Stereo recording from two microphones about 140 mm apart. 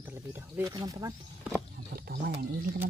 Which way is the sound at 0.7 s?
25° right (ahead or behind).